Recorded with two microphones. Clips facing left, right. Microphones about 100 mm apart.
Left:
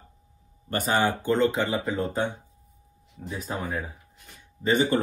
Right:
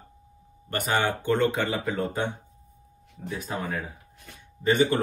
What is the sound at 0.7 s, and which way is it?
Speech, 35° left (ahead or behind).